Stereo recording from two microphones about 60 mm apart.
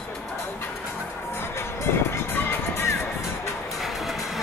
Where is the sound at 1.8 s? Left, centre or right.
Left.